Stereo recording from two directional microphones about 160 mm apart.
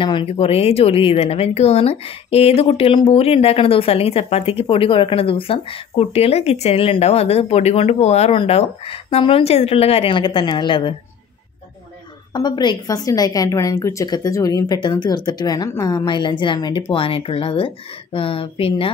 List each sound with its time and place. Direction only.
0.0 s speech: 30° left (ahead or behind)
12.3 s a woman's voice: 25° left (ahead or behind)